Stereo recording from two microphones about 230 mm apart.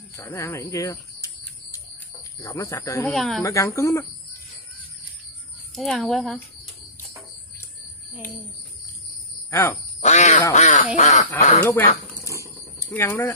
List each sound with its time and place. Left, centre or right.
0.1 s bird: centre
2.4 s speech: centre
3.1 s a woman's voice: centre
3.4 s speech: centre
5.8 s a woman's voice: centre
9.5 s speech: centre
10.0 s speech: left
12.9 s speech: centre